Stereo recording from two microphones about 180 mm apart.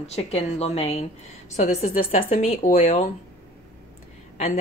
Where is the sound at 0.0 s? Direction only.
35° left (ahead or behind).